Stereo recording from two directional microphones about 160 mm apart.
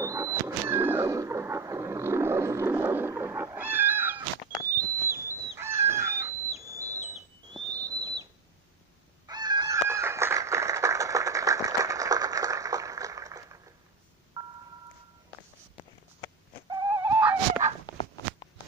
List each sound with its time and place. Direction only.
0.0 s vehicle: 20° right (ahead or behind)
4.6 s fowl: 20° right (ahead or behind)
7.5 s whistle: 25° right (ahead or behind)
9.3 s fowl: 25° right (ahead or behind)
14.3 s telephone dialing: 20° right (ahead or behind)
16.8 s dog: 15° right (ahead or behind)